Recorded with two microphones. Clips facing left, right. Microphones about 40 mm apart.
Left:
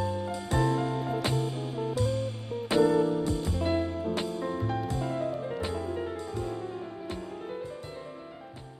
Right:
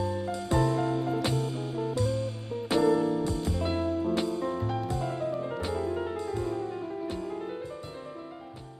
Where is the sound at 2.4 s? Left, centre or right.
Left.